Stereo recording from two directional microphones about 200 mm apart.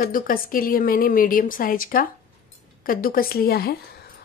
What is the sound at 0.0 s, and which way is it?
A woman's voice, 45° left (ahead or behind).